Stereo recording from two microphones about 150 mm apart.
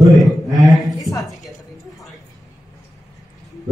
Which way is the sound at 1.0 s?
20° left (ahead or behind).